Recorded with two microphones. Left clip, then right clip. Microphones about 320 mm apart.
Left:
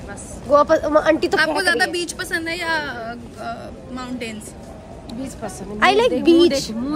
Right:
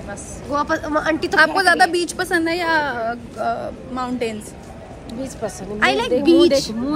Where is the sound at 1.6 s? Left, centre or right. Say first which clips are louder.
Right 4 dB; centre.